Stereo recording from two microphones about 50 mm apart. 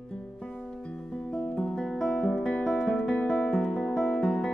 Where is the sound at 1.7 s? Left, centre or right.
Centre.